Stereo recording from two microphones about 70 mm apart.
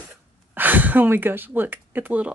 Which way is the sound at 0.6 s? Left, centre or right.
Right.